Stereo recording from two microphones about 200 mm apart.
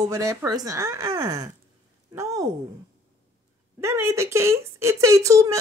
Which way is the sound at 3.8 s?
15° right (ahead or behind).